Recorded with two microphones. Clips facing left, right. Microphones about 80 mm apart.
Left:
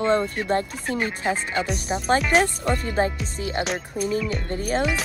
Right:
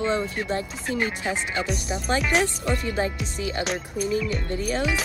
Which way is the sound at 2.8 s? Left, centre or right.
Left.